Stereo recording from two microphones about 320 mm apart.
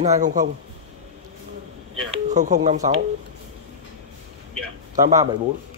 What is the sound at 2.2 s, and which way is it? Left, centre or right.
Speech, right.